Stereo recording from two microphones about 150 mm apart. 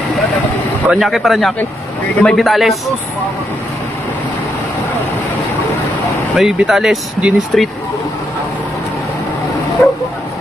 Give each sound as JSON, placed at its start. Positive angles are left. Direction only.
{"t": 0.8, "sound": "speech", "side_deg": 0}
{"t": 6.3, "sound": "speech", "side_deg": 0}
{"t": 9.8, "sound": "speech", "side_deg": 15}